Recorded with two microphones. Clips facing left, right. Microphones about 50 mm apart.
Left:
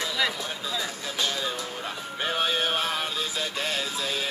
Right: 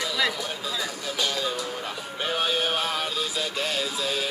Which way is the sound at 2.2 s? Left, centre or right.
Left.